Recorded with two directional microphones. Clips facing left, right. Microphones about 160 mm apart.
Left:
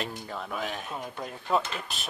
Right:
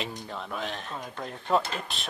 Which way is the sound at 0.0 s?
5° left (ahead or behind).